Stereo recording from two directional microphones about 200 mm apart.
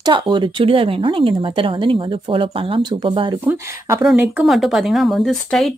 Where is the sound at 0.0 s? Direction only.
25° right (ahead or behind).